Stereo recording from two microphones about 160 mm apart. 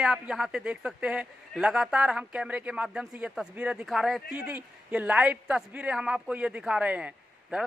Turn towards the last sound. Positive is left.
turn(degrees=-5)  # may be behind; listen again after turning